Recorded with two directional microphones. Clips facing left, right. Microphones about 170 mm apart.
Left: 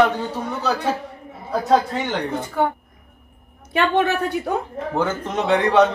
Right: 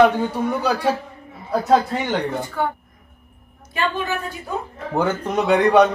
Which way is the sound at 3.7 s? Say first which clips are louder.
Left 5 dB; 70° left (ahead or behind).